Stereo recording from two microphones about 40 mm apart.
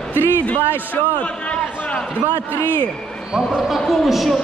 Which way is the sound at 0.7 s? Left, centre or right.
Left.